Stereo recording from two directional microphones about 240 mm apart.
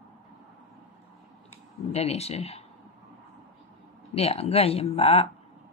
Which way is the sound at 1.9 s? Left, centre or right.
Left.